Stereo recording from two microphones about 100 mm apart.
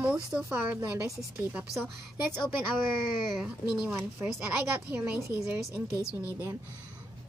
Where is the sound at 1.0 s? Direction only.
25° right (ahead or behind).